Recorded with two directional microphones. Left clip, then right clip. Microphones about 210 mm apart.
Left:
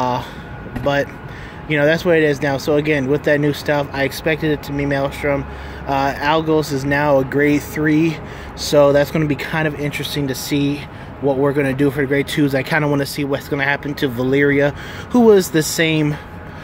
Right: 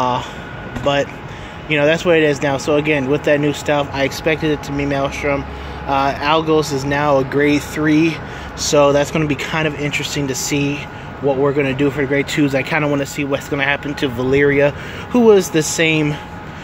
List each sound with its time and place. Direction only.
1.7 s speech: 20° left (ahead or behind)